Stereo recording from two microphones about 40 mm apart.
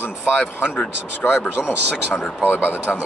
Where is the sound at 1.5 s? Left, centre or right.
Left.